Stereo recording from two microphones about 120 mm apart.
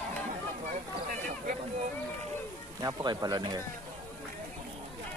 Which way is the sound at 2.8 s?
35° right (ahead or behind).